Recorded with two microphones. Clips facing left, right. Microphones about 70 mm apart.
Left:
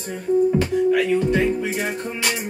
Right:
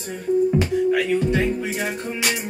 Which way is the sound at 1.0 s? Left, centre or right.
Left.